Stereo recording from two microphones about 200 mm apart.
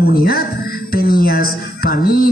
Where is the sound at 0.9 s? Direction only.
50° left (ahead or behind).